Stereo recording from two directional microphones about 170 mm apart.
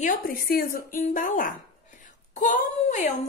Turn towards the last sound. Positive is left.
turn(degrees=50)  # may be behind; listen again after turning